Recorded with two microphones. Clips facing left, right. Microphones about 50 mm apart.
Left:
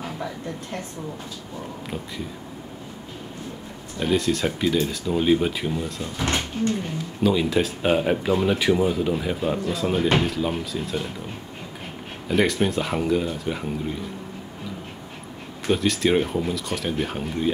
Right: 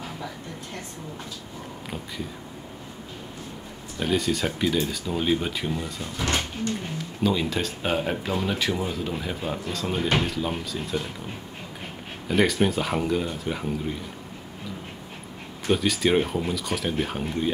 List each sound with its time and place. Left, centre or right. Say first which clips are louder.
4.0 s speech: left 3 dB; centre
6.2 s speech: left 3 dB; left
7.2 s speech: left 4 dB; centre
12.3 s speech: left 1 dB; centre
15.7 s speech: left 1 dB; centre